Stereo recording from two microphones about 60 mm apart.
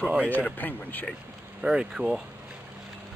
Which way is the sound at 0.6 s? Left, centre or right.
Left.